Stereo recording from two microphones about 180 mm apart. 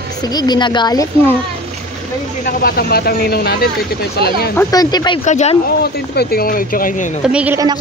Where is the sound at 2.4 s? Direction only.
55° left (ahead or behind).